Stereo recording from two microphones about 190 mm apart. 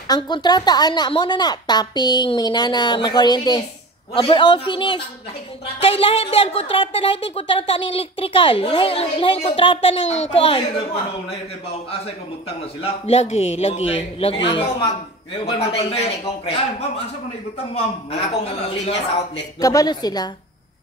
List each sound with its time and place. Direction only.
0.1 s speech: 20° left (ahead or behind)
12.4 s a man's voice: 30° left (ahead or behind)
18.3 s a man's voice: 35° left (ahead or behind)
19.6 s speech: 20° left (ahead or behind)